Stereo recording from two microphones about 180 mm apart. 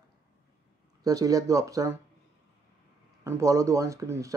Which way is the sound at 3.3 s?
15° right (ahead or behind).